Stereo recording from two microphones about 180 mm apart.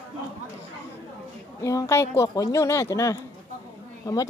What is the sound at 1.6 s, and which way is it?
Speech, 15° left (ahead or behind).